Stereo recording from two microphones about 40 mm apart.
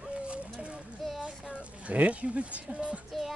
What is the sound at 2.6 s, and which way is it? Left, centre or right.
Music, right.